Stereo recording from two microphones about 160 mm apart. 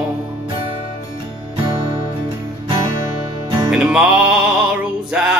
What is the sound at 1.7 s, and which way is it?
Music, 30° right (ahead or behind).